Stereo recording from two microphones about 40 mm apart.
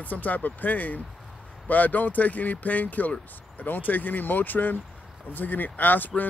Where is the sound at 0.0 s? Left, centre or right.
Left.